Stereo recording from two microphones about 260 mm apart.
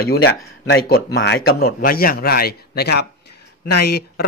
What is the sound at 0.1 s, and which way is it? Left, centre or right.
Speech, left.